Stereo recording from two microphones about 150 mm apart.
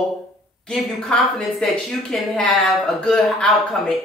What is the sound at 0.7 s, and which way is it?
A woman's voice, 5° left (ahead or behind).